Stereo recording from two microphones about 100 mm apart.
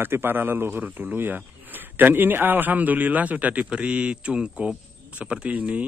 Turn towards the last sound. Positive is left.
turn(degrees=-15)  # may be behind; listen again after turning